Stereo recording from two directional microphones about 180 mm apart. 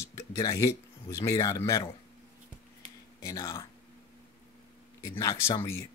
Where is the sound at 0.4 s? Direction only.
20° left (ahead or behind).